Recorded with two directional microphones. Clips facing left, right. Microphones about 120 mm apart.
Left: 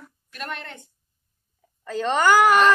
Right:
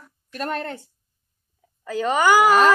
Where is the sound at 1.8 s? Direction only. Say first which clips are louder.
Right 1 dB; 5° right (ahead or behind).